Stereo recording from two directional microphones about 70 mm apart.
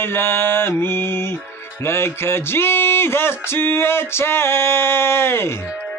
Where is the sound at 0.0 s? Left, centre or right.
Left.